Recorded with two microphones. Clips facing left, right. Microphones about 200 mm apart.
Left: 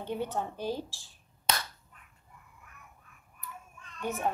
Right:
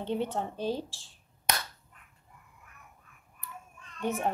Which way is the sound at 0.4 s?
20° right (ahead or behind).